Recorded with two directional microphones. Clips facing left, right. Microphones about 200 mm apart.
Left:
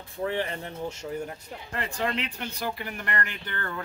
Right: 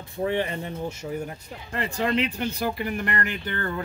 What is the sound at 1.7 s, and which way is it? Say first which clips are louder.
Speech: right 5 dB; 5° right (ahead or behind).